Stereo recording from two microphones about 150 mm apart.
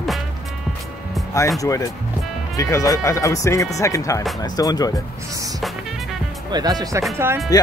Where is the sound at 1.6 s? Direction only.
20° left (ahead or behind).